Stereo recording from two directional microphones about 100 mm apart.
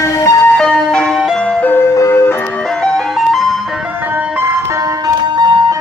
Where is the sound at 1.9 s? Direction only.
25° left (ahead or behind).